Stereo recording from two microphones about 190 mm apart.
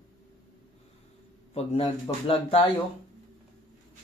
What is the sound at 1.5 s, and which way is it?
Speech, 35° left (ahead or behind).